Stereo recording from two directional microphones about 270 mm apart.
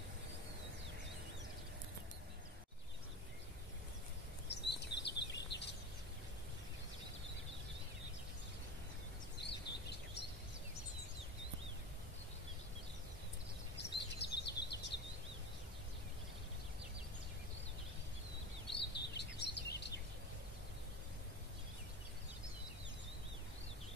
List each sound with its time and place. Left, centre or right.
4.5 s bird vocalization: left
9.4 s bird vocalization: left
13.7 s bird vocalization: left
18.9 s bird: left